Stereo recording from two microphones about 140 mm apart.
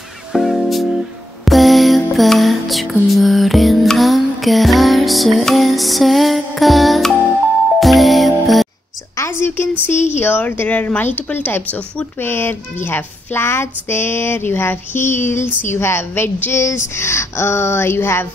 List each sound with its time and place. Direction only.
0.3 s music: centre (ahead or behind)
9.1 s a sound: 20° left (ahead or behind)
9.8 s speech: 15° left (ahead or behind)